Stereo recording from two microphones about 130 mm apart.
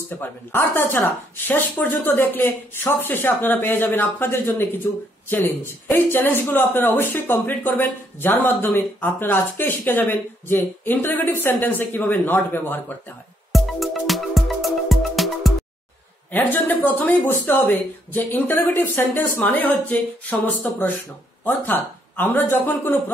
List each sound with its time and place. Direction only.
0.1 s speech: 15° left (ahead or behind)
13.5 s music: centre (ahead or behind)
16.3 s speech: 15° left (ahead or behind)
21.5 s speech: 15° left (ahead or behind)